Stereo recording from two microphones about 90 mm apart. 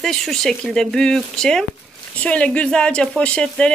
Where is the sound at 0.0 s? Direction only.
5° left (ahead or behind).